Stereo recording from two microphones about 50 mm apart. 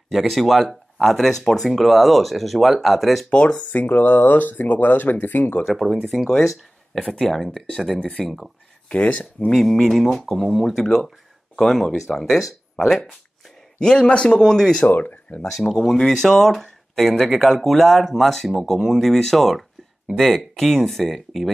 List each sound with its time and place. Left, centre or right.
0.1 s speech: centre
3.3 s speech: left
6.0 s speech: centre
8.8 s speech: left
9.5 s speech: centre
13.7 s speech: centre
14.9 s speech: left
15.4 s speech: centre